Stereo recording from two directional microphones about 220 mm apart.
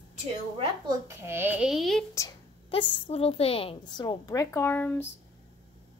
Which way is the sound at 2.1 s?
20° left (ahead or behind).